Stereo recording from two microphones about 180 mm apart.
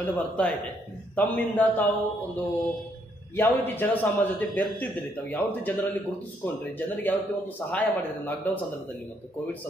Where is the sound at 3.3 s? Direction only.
10° left (ahead or behind).